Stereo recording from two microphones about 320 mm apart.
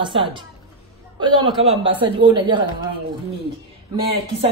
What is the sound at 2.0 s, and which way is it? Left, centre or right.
Speech, centre.